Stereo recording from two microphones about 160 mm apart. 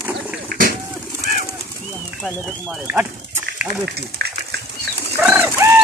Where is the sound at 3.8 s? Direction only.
90° right.